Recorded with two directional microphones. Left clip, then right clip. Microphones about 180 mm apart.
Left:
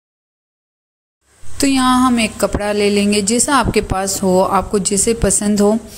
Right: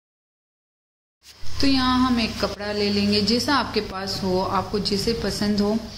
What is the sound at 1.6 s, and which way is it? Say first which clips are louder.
Speech: left 7 dB; 60° left (ahead or behind).